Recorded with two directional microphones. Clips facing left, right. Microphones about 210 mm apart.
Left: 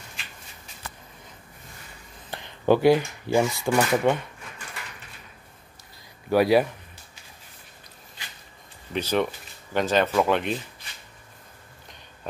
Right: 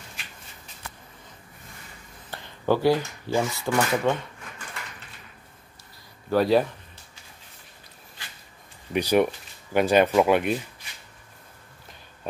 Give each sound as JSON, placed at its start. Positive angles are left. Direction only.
{"t": 2.3, "sound": "speech", "side_deg": 20}
{"t": 6.3, "sound": "speech", "side_deg": 10}
{"t": 8.9, "sound": "speech", "side_deg": -10}